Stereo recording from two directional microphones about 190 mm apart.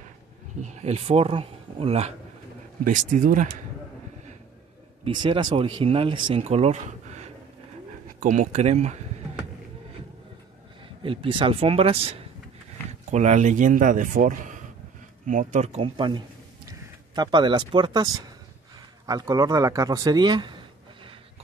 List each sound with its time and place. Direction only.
0.6 s speech: 35° right (ahead or behind)
2.8 s speech: 45° right (ahead or behind)
5.0 s a man's voice: 25° right (ahead or behind)
11.0 s a man's voice: 25° right (ahead or behind)